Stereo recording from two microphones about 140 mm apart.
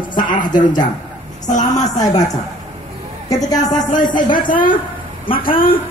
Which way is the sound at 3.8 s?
70° left (ahead or behind).